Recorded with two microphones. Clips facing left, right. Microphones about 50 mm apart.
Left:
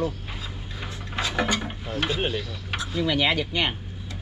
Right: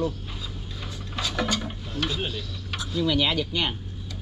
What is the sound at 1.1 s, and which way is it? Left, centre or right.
Speech, left.